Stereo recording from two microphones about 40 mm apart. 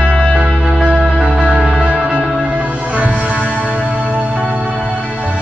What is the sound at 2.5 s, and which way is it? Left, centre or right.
Music, right.